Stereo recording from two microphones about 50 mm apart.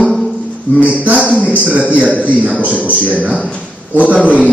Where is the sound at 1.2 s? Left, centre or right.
Left.